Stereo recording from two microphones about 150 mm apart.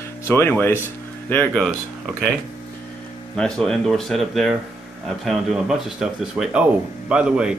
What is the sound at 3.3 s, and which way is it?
Speech, 5° left (ahead or behind).